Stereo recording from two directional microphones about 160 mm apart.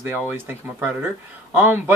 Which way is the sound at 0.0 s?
10° right (ahead or behind).